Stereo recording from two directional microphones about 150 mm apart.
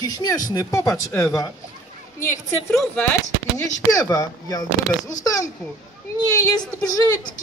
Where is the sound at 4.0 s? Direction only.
25° left (ahead or behind).